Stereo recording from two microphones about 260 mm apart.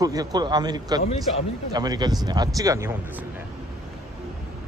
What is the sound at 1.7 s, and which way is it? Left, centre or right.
Speech, centre.